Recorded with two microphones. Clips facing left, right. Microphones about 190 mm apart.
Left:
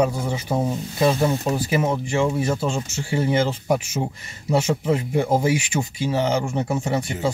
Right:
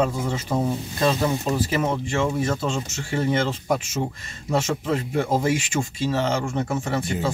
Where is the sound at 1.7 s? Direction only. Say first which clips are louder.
Left 2 dB; 10° left (ahead or behind).